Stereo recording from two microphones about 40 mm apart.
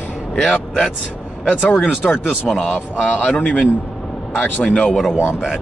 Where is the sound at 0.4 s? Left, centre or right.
Centre.